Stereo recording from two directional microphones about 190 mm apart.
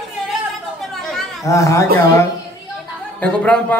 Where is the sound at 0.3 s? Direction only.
Centre (ahead or behind).